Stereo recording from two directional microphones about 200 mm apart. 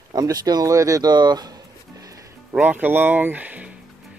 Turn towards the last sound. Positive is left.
turn(degrees=-5)  # may be behind; listen again after turning